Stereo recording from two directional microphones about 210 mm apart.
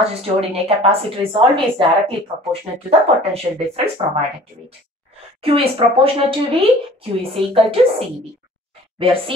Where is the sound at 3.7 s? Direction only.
25° right (ahead or behind).